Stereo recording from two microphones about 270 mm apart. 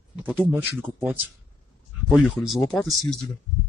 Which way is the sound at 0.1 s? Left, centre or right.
Centre.